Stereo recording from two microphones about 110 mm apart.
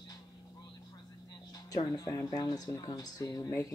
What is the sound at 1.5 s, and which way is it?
Speech, 35° left (ahead or behind).